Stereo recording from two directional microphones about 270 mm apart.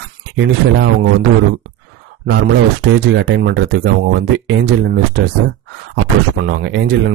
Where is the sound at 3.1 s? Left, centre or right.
Right.